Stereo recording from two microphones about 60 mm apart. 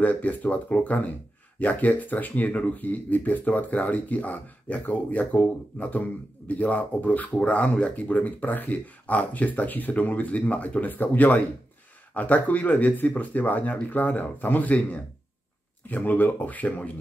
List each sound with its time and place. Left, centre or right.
0.0 s speech: left